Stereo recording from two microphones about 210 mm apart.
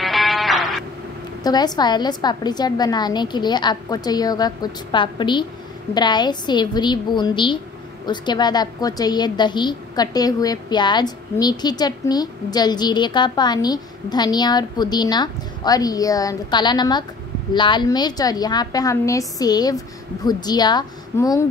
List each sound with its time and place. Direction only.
0.0 s music: centre (ahead or behind)
1.4 s a woman's voice: 20° left (ahead or behind)